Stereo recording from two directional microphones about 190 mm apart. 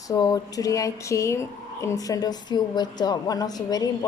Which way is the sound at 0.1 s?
20° left (ahead or behind).